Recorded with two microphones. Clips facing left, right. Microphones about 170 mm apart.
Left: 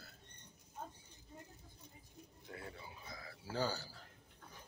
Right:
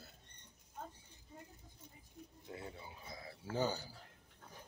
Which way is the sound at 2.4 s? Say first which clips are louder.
Right 1 dB; 20° right (ahead or behind).